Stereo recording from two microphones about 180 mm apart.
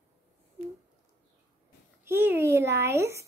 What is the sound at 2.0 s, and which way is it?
A child's voice, 15° right (ahead or behind).